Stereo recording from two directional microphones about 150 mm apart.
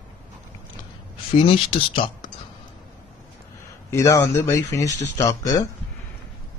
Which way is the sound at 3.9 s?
20° left (ahead or behind).